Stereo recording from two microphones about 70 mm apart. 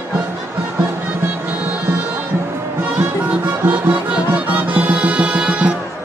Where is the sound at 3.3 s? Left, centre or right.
Right.